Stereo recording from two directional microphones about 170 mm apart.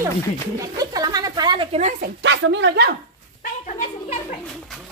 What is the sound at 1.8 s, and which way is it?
Speech, 50° right (ahead or behind).